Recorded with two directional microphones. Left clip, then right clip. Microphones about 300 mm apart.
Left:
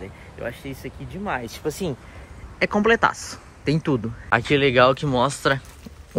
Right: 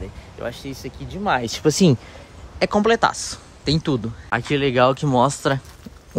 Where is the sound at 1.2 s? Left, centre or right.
Right.